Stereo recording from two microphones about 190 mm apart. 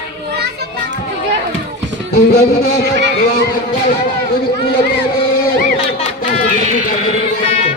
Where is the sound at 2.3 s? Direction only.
55° left (ahead or behind).